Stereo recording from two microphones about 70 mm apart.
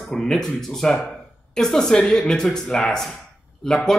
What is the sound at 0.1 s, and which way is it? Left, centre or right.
Speech, centre.